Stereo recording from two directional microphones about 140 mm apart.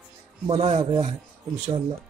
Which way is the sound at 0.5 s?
45° right (ahead or behind).